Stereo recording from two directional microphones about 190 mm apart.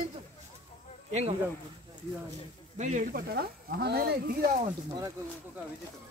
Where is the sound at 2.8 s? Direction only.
45° right (ahead or behind).